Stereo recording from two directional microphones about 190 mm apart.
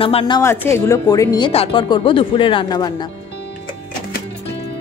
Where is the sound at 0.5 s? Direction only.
10° left (ahead or behind).